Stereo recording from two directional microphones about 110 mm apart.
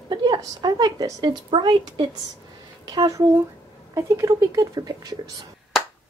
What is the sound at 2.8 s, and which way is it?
A woman's voice, 35° right (ahead or behind).